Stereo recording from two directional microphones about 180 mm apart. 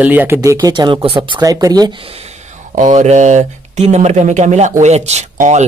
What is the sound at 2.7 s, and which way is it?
Speech, 40° right (ahead or behind).